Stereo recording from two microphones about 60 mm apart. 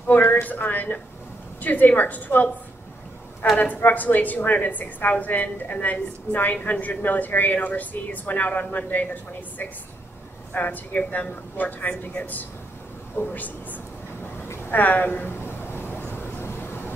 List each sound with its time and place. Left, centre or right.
0.1 s a woman's voice: left
3.5 s a woman's voice: left
10.5 s a woman's voice: left
14.7 s a sound: left